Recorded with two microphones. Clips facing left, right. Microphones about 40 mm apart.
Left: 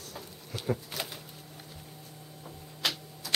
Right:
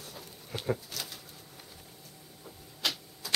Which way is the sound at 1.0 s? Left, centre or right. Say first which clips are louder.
Left 4 dB; left.